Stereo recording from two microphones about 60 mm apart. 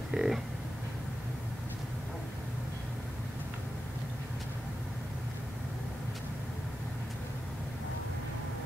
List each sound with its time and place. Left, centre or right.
0.1 s speech: centre